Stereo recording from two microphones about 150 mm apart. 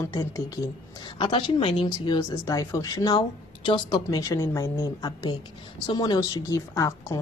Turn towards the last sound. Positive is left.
turn(degrees=20)  # may be behind; listen again after turning